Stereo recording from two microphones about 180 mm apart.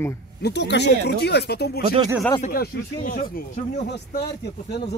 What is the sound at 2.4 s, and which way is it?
Speech, 50° left (ahead or behind).